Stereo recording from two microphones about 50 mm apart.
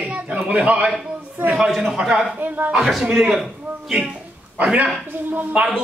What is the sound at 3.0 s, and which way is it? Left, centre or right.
Speech, centre.